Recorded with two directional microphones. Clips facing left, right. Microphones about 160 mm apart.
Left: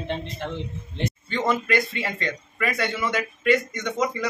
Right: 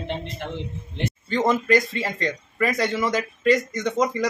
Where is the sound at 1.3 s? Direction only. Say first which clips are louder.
Right 5 dB; 40° right (ahead or behind).